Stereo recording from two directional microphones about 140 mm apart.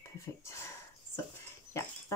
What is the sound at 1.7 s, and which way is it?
Speech, 20° left (ahead or behind).